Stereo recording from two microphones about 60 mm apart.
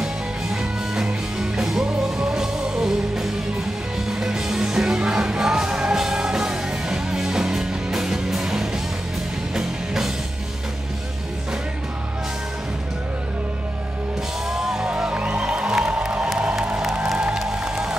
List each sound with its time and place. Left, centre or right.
0.0 s music: centre
14.5 s music: centre